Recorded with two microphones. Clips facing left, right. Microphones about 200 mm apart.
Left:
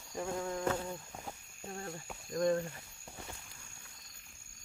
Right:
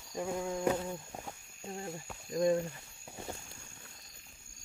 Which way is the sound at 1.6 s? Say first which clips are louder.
Right 2 dB; 15° right (ahead or behind).